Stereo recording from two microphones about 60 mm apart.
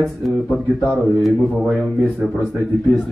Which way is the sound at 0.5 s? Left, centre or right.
Centre.